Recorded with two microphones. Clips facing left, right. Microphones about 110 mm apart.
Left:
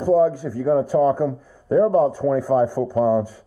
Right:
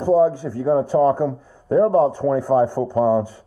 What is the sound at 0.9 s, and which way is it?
Speech, 15° right (ahead or behind).